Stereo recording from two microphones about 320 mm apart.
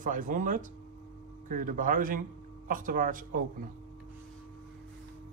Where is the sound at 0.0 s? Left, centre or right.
Right.